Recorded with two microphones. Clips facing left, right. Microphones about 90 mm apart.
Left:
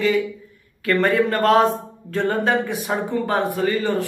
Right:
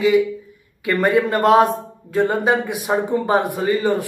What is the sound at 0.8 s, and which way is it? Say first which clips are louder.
Speech: right 1 dB; 15° right (ahead or behind).